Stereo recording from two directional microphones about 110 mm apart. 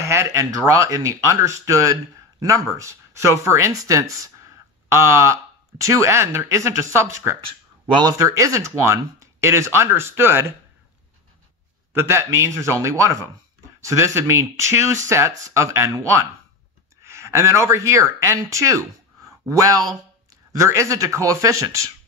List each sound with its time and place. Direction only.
0.0 s speech: 25° right (ahead or behind)
7.9 s speech: 35° right (ahead or behind)
11.9 s speech: 20° right (ahead or behind)
17.0 s speech: 25° right (ahead or behind)